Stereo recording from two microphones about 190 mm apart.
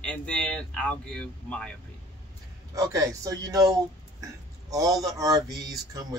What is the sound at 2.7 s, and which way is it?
A man's voice, 20° right (ahead or behind).